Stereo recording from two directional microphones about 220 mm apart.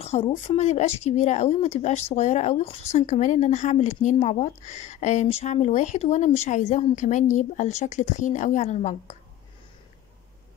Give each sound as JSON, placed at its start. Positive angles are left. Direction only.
{"t": 0.0, "sound": "speech", "side_deg": 25}